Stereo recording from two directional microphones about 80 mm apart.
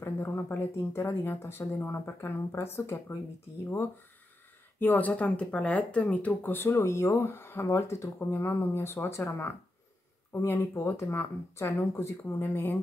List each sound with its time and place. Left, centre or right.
0.0 s speech: left
4.7 s speech: left
6.7 s speech: left